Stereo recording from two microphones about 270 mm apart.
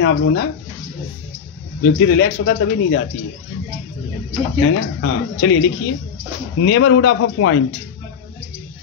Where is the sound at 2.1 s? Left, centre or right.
Left.